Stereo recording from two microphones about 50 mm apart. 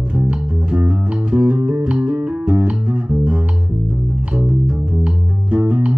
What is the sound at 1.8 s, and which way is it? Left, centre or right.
Music, centre.